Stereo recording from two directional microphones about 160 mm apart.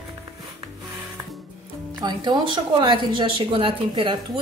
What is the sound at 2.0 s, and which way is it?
A woman's voice, 30° right (ahead or behind).